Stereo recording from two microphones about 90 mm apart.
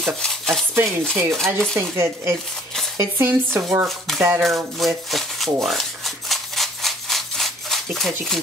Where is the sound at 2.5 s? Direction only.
5° left (ahead or behind).